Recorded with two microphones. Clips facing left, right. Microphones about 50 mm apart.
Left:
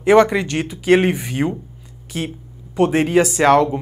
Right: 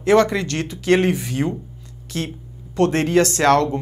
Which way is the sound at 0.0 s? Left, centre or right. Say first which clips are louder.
Left 3 dB; centre.